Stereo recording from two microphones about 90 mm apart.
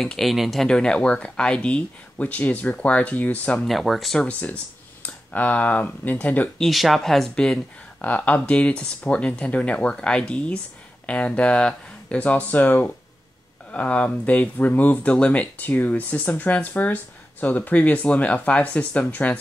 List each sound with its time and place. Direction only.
0.0 s speech: 5° left (ahead or behind)
3.6 s speech: centre (ahead or behind)
4.3 s speech: 15° left (ahead or behind)
6.6 s speech: centre (ahead or behind); by 19.3 s 15° left (ahead or behind)